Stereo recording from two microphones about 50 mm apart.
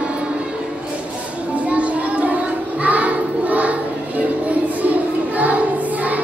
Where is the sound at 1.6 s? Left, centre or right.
Right.